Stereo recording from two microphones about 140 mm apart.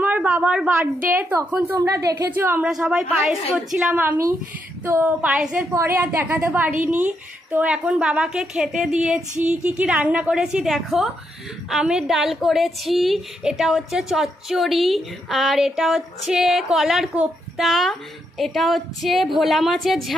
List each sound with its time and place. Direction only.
0.0 s a woman's voice: 10° right (ahead or behind)
2.7 s a woman's voice: 5° right (ahead or behind)